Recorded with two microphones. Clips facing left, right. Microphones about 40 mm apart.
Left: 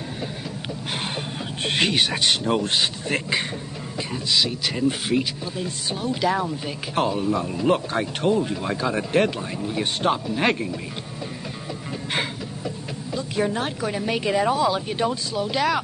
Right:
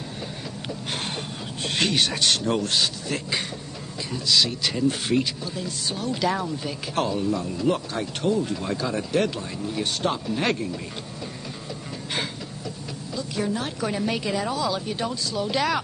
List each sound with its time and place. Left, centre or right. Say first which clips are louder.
1.6 s speech: left 3 dB; left
1.9 s speech: left 1 dB; centre
4.3 s speech: right 1 dB; centre
5.6 s speech: left 3 dB; left
12.1 s a sound: left 3 dB; left
13.7 s speech: left 1 dB; centre
14.2 s speech: left 5 dB; left
15.3 s speech: even; centre